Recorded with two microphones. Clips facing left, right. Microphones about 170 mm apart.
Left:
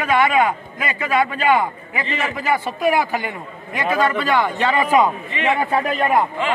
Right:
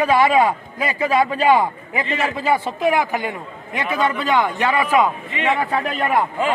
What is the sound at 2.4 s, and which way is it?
A man's voice, 25° right (ahead or behind).